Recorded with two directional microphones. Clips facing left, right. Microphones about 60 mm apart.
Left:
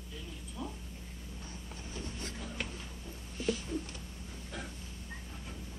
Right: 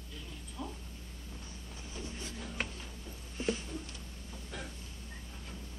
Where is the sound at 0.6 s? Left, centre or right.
Centre.